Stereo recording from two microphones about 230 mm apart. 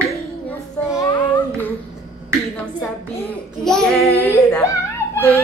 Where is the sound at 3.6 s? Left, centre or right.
Centre.